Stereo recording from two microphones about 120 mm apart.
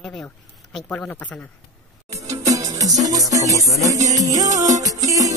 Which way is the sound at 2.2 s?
30° right (ahead or behind).